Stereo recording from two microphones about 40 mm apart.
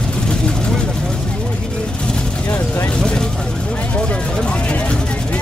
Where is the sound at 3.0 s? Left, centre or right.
Centre.